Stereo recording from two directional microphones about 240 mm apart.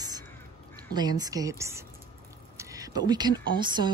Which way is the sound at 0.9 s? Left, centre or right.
Centre.